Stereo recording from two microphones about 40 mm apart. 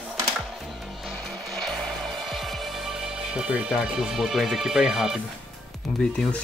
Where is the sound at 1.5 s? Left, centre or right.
Centre.